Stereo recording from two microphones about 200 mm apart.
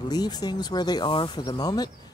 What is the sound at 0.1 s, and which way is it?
Speech, 20° left (ahead or behind).